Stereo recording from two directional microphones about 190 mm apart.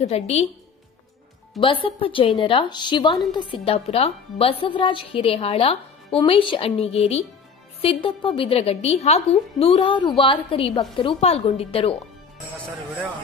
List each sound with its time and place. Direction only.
0.0 s a woman's voice: 35° left (ahead or behind)
1.6 s a woman's voice: 25° left (ahead or behind)